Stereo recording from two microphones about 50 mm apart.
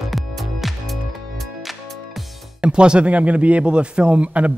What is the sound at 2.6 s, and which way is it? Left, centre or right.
A man's voice, centre.